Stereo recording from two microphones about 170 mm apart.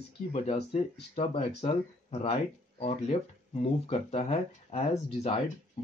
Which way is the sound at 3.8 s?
40° left (ahead or behind).